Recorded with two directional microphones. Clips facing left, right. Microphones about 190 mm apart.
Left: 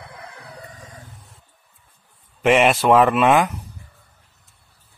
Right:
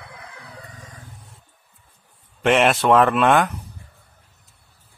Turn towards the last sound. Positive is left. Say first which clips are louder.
# left 1 dB
turn(degrees=5)  # may be behind; listen again after turning